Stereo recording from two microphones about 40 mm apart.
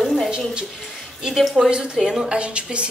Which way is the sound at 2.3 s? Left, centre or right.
Right.